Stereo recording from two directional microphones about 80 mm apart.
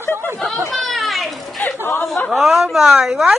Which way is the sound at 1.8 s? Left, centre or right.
Left.